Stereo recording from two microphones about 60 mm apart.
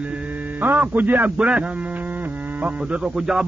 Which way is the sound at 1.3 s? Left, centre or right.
Centre.